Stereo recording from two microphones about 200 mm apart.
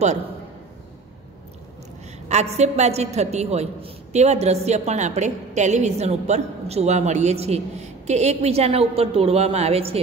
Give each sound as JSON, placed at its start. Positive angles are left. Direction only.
{"t": 2.5, "sound": "a woman's voice", "side_deg": -35}